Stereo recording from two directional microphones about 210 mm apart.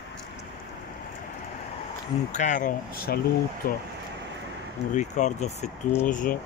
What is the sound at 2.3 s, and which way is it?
Speech, 35° left (ahead or behind).